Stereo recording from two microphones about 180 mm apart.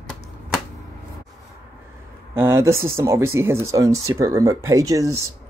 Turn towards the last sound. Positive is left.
turn(degrees=-20)  # may be behind; listen again after turning